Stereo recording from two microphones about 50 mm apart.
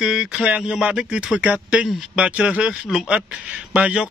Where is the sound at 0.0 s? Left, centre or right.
Centre.